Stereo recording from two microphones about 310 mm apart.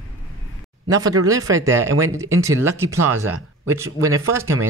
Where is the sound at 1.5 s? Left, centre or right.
Centre.